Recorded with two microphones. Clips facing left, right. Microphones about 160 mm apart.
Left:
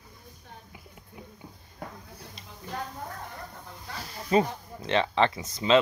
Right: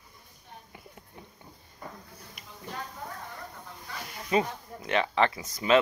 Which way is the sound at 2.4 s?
25° left (ahead or behind).